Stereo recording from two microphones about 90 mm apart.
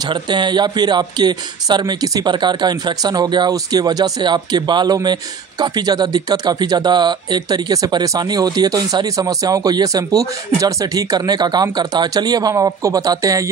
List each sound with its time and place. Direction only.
0.1 s speech: 55° right (ahead or behind); by 13.5 s 40° right (ahead or behind)